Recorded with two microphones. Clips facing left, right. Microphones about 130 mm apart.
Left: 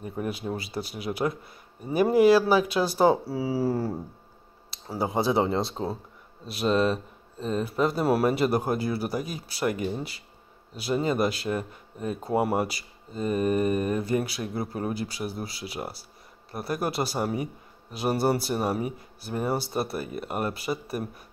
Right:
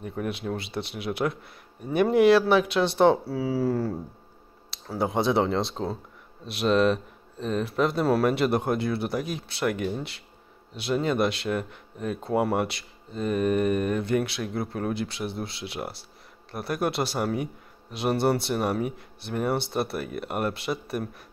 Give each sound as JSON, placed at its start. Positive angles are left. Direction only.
{"t": 0.2, "sound": "speech", "side_deg": 20}
{"t": 0.6, "sound": "speech", "side_deg": 5}
{"t": 5.0, "sound": "speech", "side_deg": 0}